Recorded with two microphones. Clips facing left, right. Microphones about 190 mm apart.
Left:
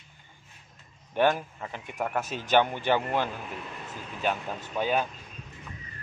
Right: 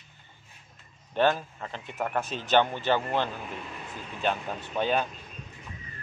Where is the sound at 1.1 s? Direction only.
15° left (ahead or behind).